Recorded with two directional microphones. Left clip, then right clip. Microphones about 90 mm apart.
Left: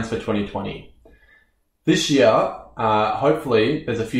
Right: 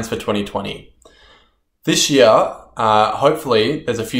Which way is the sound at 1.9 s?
15° right (ahead or behind).